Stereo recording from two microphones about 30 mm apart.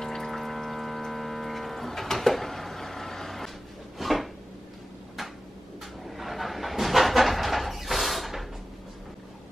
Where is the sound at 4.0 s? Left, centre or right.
Centre.